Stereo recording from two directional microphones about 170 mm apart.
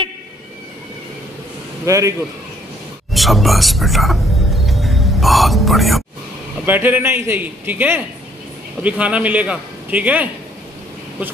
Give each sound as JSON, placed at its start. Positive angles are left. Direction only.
{"t": 1.9, "sound": "a man's voice", "side_deg": -20}
{"t": 3.1, "sound": "speech", "side_deg": 0}
{"t": 6.6, "sound": "a man's voice", "side_deg": -10}